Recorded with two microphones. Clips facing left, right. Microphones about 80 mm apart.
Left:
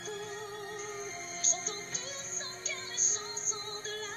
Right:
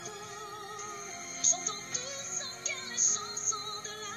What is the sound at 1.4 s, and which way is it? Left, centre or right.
Music, left.